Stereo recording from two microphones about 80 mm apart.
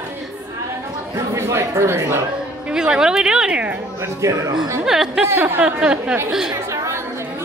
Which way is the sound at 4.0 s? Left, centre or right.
Right.